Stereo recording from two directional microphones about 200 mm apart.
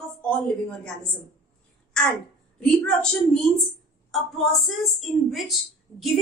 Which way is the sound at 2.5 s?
5° left (ahead or behind).